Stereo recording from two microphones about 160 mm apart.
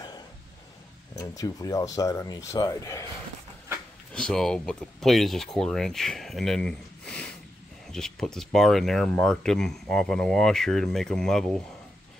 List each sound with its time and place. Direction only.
1.1 s speech: 20° left (ahead or behind)
4.1 s speech: 5° left (ahead or behind)